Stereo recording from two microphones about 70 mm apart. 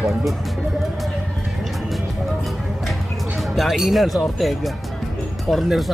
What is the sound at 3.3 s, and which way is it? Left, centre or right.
Speech, centre.